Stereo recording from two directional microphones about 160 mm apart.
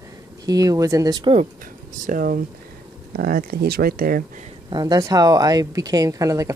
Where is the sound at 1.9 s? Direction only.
55° right (ahead or behind).